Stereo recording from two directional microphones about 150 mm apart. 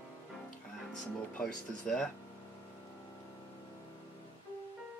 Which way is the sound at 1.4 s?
5° left (ahead or behind).